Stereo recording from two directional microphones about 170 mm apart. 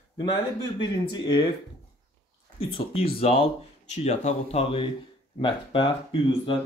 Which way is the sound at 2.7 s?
35° left (ahead or behind).